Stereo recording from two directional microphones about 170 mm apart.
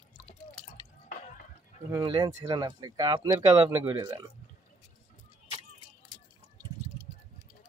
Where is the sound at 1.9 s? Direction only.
25° right (ahead or behind).